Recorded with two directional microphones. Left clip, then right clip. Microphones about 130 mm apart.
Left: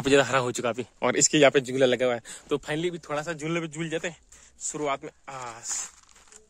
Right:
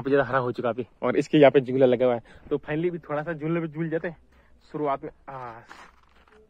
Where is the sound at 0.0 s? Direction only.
65° left (ahead or behind); by 1.1 s 40° left (ahead or behind).